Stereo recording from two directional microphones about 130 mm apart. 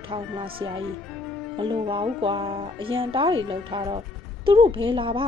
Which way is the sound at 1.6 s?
40° right (ahead or behind).